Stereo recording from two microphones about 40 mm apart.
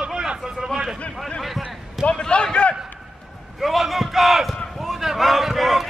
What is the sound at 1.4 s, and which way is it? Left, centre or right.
Basketball bounce, centre.